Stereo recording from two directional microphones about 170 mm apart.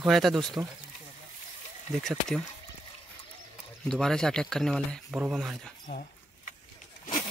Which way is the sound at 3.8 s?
Centre (ahead or behind).